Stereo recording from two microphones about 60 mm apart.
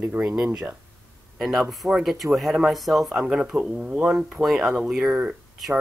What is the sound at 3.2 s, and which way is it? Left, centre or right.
Speech, centre.